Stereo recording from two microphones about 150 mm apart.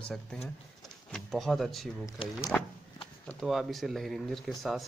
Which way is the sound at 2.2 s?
35° left (ahead or behind).